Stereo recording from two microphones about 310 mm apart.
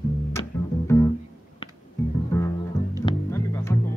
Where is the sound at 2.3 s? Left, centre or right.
Centre.